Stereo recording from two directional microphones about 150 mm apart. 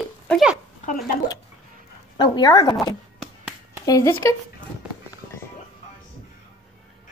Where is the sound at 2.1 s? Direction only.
30° left (ahead or behind).